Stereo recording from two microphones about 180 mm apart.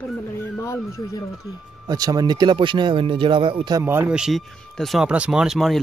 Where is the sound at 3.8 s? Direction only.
10° right (ahead or behind).